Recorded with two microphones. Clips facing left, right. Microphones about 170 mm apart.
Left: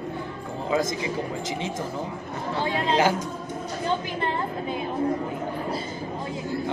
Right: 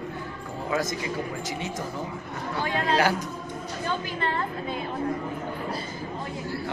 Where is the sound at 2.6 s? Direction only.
20° left (ahead or behind).